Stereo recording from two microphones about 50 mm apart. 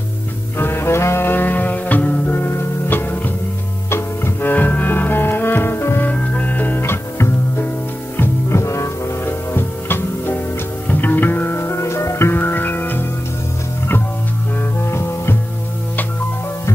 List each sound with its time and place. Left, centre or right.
0.6 s music: left
2.3 s music: left
6.0 s music: left
6.8 s music: left
8.5 s music: left
9.2 s music: left
12.3 s music: left
14.9 s music: left